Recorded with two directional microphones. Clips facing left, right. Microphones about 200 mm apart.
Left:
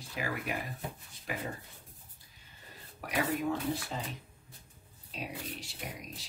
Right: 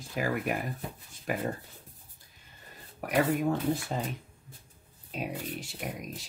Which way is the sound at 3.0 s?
50° right (ahead or behind).